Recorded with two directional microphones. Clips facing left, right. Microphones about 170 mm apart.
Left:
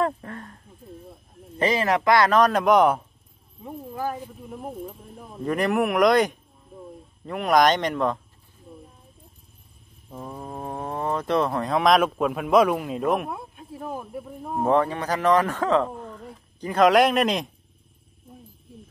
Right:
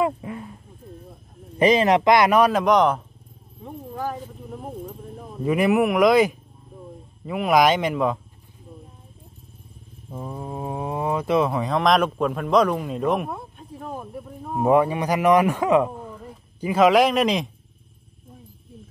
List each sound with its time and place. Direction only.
0.0 s a sound: 10° right (ahead or behind)
1.6 s speech: 20° right (ahead or behind)
2.5 s speech: 5° left (ahead or behind)
5.4 s speech: 5° right (ahead or behind)
10.0 s speech: 5° right (ahead or behind)
14.5 s a man's voice: 10° right (ahead or behind)